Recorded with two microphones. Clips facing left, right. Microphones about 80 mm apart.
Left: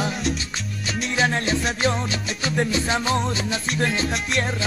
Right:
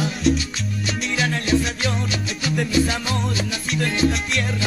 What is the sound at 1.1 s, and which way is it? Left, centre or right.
Music, left.